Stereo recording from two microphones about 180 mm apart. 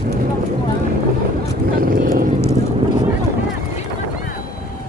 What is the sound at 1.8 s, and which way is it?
Vehicle, 55° right (ahead or behind).